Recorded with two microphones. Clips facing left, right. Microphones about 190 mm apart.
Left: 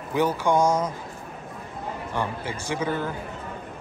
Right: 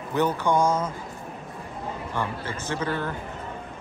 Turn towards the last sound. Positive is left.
turn(degrees=10)  # may be behind; listen again after turning